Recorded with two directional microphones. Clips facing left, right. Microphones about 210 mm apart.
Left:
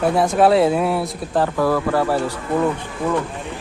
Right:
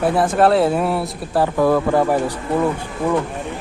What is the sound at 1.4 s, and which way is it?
Speech, 20° right (ahead or behind).